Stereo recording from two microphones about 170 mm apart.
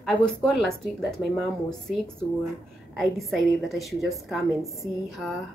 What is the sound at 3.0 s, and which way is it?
A woman's voice, centre (ahead or behind).